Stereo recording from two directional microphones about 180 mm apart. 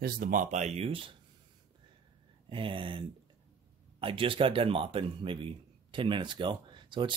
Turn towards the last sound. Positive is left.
turn(degrees=-25)  # may be behind; listen again after turning